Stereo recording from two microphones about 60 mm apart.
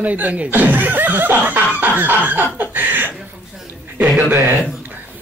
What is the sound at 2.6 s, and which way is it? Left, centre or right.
Speech, right.